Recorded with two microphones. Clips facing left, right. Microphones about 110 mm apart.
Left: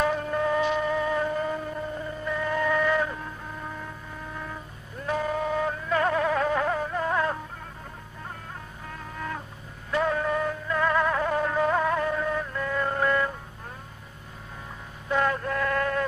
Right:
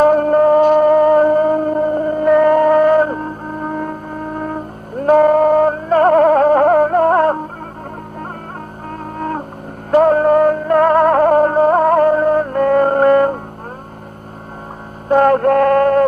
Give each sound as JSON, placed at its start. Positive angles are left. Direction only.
{"t": 0.0, "sound": "music", "side_deg": -50}
{"t": 9.8, "sound": "music", "side_deg": -50}
{"t": 15.0, "sound": "male singing", "side_deg": -50}